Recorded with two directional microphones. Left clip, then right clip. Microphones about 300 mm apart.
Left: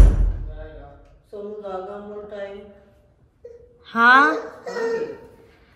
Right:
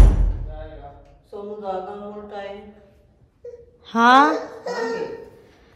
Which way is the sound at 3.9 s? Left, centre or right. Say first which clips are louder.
Even; centre.